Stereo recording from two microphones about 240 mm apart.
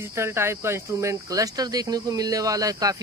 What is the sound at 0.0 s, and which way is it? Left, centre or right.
Speech, centre.